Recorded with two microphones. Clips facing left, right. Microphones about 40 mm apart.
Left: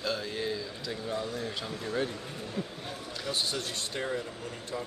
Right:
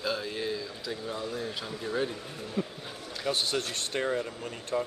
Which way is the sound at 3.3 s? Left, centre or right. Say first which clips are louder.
Right 2 dB; right.